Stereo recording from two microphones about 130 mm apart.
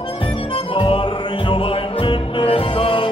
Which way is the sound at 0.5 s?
45° left (ahead or behind).